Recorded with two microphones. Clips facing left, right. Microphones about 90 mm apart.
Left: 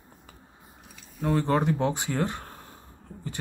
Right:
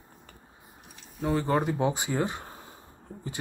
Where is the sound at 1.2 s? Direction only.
Centre (ahead or behind).